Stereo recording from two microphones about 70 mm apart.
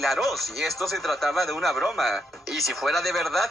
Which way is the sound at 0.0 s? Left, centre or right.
Centre.